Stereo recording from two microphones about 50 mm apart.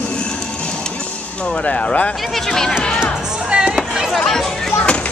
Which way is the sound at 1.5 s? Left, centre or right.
Left.